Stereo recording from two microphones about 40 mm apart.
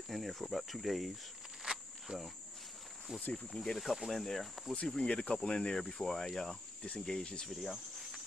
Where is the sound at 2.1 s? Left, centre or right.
Right.